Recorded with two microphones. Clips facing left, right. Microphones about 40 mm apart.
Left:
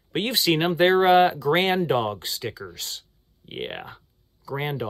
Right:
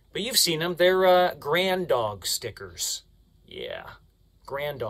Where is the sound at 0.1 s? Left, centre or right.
Left.